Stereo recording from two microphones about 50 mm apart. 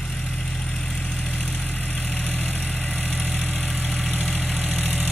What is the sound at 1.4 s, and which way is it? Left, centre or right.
Vehicle, left.